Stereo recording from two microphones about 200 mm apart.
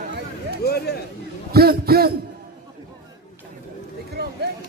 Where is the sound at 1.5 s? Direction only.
50° right (ahead or behind).